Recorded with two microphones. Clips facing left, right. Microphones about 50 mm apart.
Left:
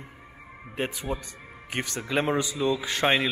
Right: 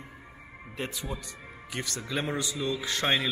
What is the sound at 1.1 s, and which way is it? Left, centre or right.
Speech, left.